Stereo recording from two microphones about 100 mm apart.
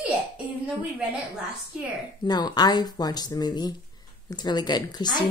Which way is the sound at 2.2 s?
45° left (ahead or behind).